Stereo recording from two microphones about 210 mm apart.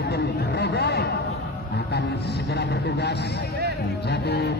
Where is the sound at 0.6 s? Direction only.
50° left (ahead or behind).